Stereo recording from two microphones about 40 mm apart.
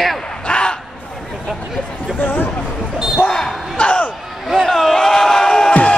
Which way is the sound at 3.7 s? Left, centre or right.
Left.